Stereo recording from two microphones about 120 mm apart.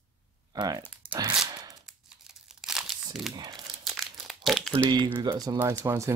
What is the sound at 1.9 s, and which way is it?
Crumpling, 5° right (ahead or behind).